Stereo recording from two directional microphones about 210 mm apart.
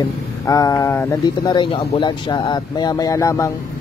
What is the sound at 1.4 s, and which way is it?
Speech, 20° left (ahead or behind).